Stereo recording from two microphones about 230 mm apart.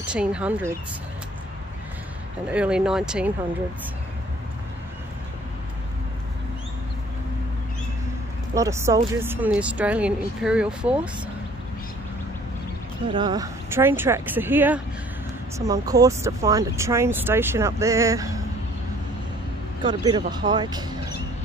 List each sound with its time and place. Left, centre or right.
0.0 s speech: centre
2.4 s speech: centre
8.5 s speech: centre
13.1 s speech: centre
19.8 s speech: centre